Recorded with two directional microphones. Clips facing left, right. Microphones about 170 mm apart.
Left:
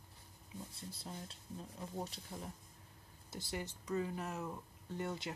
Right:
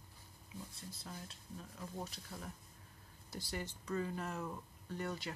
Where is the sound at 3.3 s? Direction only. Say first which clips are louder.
Even; 20° left (ahead or behind).